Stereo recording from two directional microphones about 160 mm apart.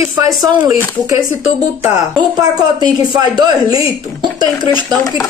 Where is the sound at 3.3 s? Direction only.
25° right (ahead or behind).